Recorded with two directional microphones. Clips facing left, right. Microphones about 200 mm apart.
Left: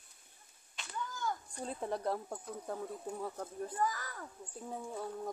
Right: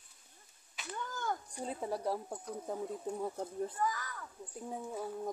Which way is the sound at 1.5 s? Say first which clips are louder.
Right 1 dB; 10° right (ahead or behind).